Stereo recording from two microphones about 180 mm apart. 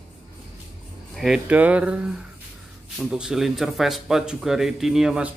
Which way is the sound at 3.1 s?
Centre (ahead or behind).